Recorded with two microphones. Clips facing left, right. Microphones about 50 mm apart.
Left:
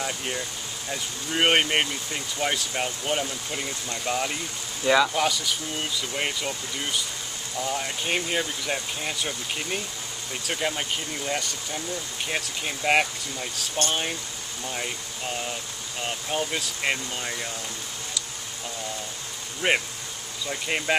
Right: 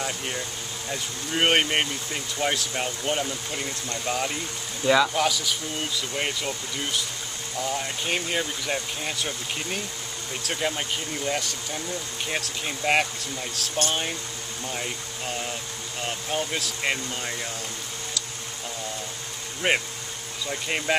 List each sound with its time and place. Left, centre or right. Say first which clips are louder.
0.0 s speech: even; centre
16.1 s speech: even; centre
19.6 s speech: even; centre